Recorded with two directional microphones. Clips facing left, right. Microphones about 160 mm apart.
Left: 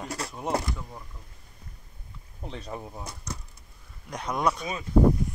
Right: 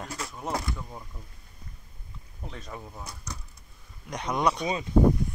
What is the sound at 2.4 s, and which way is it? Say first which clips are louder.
Speech: left 4 dB; 30° left (ahead or behind).